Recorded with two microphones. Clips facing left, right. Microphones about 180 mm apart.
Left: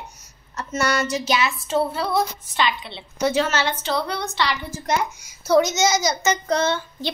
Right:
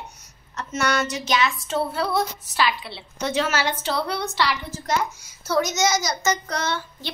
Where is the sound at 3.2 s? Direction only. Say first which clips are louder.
Left 4 dB; 10° left (ahead or behind).